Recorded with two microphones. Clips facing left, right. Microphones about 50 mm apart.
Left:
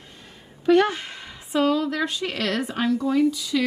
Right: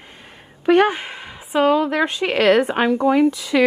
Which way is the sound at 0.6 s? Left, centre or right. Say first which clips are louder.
Right 3 dB; right.